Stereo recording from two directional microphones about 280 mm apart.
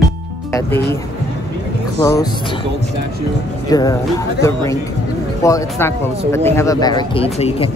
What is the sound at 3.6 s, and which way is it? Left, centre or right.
Speech, centre.